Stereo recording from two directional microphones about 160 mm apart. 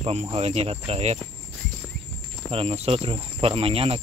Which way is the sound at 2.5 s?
35° right (ahead or behind).